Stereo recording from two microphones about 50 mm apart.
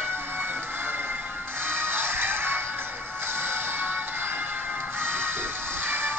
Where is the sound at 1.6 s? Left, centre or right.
Right.